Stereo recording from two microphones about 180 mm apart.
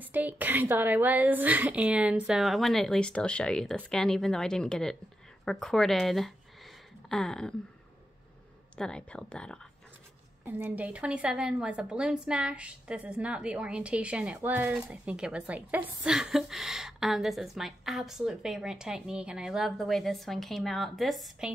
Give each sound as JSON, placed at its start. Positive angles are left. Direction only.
{"t": 0.0, "sound": "a woman's voice", "side_deg": -10}
{"t": 8.7, "sound": "a woman's voice", "side_deg": 5}
{"t": 10.4, "sound": "a woman's voice", "side_deg": -10}